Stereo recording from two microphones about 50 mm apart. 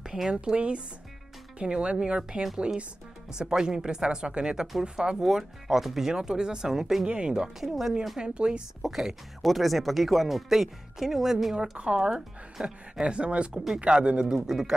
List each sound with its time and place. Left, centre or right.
0.0 s a sound: centre
0.3 s speech: right
7.1 s speech: centre
7.6 s speech: centre
8.2 s speech: centre
8.8 s speech: centre
11.8 s speech: right
14.2 s speech: centre